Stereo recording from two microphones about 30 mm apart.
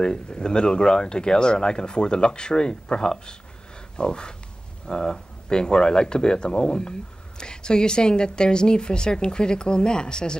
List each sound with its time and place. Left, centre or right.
0.0 s speech: left